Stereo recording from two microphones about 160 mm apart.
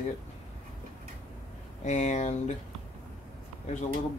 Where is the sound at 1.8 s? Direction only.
45° left (ahead or behind).